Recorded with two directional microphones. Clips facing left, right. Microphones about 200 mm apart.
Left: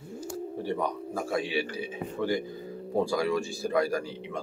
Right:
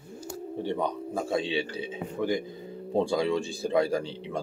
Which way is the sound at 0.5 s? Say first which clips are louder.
Right 2 dB; 25° right (ahead or behind).